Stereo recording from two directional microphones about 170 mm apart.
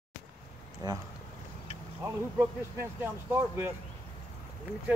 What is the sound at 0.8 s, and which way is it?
Speech, 20° right (ahead or behind).